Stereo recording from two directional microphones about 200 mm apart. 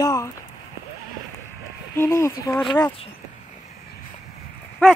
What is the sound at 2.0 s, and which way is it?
Speech, 15° left (ahead or behind).